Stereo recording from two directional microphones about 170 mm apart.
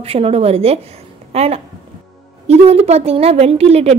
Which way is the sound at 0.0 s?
35° right (ahead or behind).